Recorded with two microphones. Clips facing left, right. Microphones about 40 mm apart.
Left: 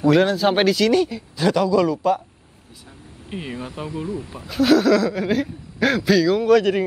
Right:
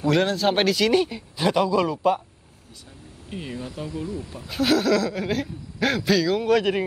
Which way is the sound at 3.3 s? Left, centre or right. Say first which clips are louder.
Left 3 dB; left.